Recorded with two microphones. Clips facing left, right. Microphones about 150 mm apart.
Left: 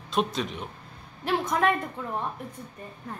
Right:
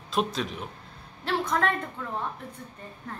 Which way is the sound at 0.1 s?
Centre (ahead or behind).